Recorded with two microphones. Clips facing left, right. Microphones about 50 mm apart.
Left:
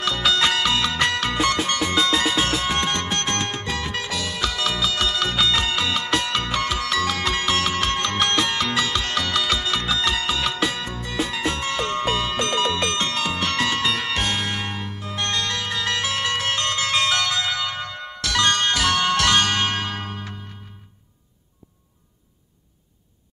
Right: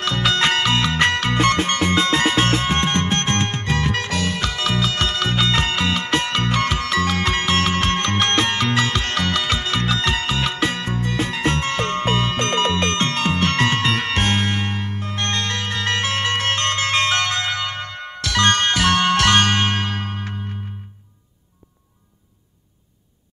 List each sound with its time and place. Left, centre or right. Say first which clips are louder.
0.0 s music: right 2 dB; right